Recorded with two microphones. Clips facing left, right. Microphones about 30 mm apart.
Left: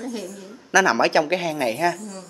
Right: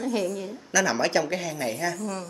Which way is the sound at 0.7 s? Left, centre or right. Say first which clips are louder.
Left 6 dB; left.